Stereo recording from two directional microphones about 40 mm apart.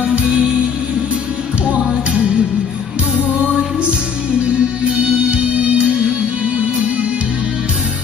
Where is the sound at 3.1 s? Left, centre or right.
Right.